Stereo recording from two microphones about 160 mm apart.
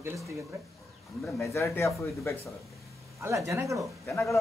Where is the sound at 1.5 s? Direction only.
20° left (ahead or behind).